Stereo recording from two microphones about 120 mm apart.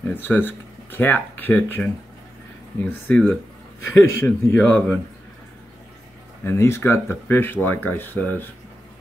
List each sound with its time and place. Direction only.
0.0 s speech: 15° left (ahead or behind)
6.4 s speech: 20° left (ahead or behind)